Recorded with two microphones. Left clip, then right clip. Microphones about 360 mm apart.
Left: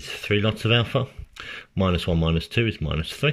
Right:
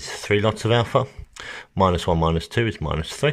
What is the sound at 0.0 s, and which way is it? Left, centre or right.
Speech, centre.